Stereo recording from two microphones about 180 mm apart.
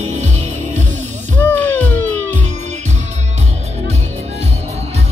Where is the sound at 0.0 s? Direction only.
40° right (ahead or behind).